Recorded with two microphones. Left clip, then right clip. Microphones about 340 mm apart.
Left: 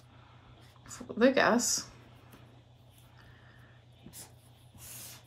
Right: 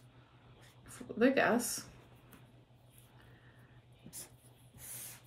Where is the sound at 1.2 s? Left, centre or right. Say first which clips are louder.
Left 4 dB; centre.